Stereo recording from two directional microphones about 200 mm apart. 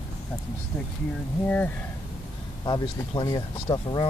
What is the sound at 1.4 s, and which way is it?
Speech, 5° left (ahead or behind).